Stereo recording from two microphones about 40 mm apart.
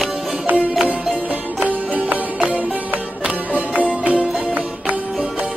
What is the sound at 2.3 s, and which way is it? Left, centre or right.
Music, right.